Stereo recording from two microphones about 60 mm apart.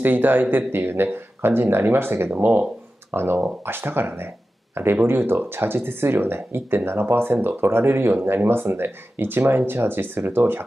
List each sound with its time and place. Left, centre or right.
0.0 s speech: right